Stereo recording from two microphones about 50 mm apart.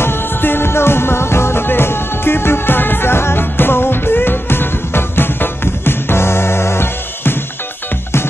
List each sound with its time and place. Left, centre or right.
0.0 s music: left